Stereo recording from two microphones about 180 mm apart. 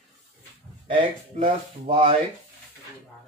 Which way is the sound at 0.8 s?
30° right (ahead or behind).